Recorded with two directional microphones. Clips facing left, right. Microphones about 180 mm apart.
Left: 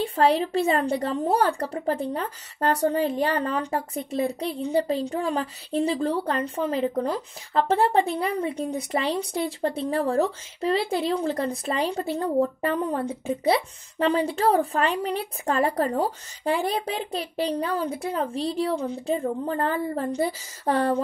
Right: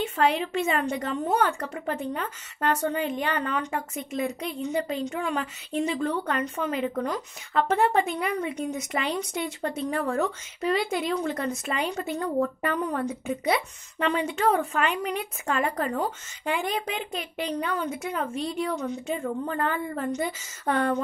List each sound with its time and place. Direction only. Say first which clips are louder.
0.0 s speech: left 3 dB; 35° left (ahead or behind)